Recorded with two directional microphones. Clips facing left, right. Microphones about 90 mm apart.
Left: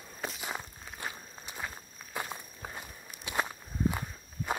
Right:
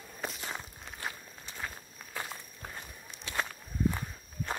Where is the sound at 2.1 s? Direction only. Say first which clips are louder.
Left 3 dB; 15° left (ahead or behind).